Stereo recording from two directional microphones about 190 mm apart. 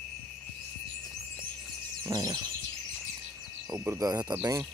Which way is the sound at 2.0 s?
20° right (ahead or behind).